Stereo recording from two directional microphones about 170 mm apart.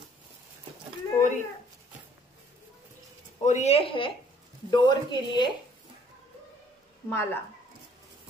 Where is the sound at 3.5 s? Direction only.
40° left (ahead or behind).